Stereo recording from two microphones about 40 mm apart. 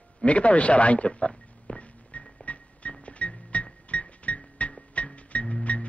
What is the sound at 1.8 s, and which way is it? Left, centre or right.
Music, left.